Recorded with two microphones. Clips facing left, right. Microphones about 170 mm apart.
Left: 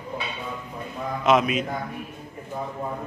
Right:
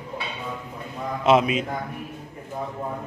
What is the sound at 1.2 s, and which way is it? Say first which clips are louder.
Speech: right 2 dB; 25° right (ahead or behind).